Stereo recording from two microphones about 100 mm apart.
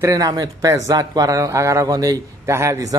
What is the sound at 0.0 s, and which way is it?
Speech, 35° right (ahead or behind).